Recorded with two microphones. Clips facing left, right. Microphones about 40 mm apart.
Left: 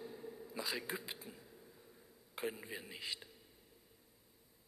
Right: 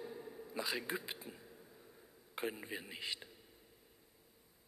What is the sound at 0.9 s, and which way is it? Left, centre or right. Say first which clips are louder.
Speech: right 2 dB; right.